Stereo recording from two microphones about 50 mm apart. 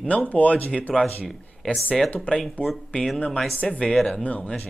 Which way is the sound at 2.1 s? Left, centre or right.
Left.